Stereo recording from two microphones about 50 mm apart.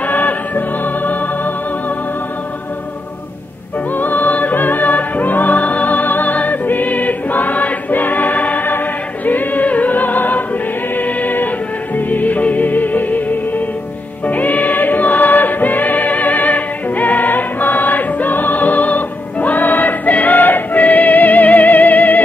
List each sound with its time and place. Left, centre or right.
0.0 s music: left
3.9 s music: left
14.2 s choir: left